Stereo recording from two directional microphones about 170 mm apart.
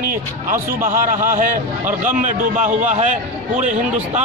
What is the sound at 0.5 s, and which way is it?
A man's voice, 50° right (ahead or behind).